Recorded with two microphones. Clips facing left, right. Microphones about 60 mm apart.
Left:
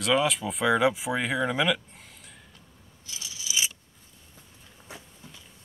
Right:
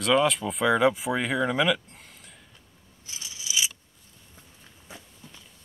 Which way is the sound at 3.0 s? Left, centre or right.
Right.